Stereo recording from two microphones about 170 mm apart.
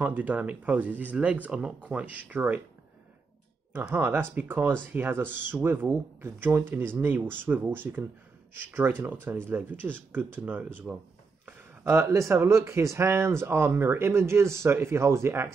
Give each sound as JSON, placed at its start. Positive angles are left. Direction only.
{"t": 0.0, "sound": "speech", "side_deg": -10}
{"t": 3.7, "sound": "speech", "side_deg": -15}